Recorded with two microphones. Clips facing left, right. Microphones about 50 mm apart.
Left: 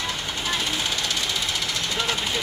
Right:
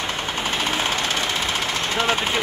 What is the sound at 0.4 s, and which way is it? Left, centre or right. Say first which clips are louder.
Vehicle: right 4 dB; right.